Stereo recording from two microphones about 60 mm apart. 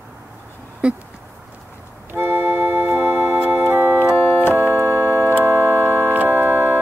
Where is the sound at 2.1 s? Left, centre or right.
Right.